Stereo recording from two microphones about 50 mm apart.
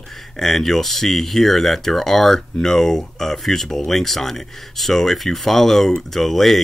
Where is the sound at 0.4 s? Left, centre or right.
Centre.